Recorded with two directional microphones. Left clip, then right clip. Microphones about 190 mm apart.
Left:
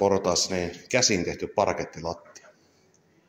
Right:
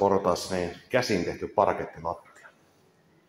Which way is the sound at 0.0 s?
15° left (ahead or behind).